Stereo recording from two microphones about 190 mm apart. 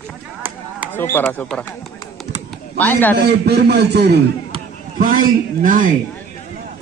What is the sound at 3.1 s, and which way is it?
A man's voice, 60° right (ahead or behind).